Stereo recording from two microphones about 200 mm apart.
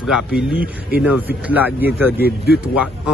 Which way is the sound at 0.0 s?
Centre (ahead or behind).